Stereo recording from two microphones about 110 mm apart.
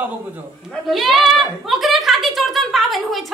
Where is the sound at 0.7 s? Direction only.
Centre (ahead or behind).